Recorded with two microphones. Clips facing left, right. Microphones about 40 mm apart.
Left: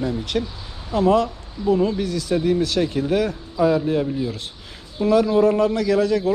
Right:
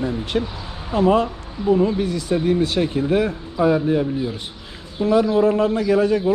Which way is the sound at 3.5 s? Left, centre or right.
Right.